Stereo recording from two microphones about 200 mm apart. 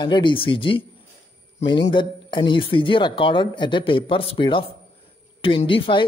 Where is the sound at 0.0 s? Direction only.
25° left (ahead or behind).